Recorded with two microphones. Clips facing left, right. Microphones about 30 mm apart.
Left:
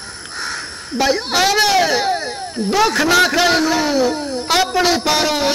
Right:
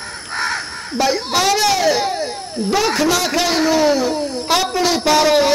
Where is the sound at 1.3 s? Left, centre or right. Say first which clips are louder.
Left 2 dB; centre.